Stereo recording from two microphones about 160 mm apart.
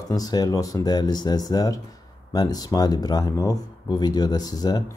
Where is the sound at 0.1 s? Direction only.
25° left (ahead or behind).